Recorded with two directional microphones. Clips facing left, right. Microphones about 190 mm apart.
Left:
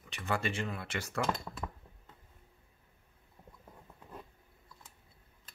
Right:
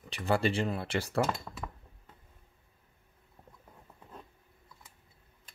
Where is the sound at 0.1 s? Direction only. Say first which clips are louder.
Right 6 dB; 35° right (ahead or behind).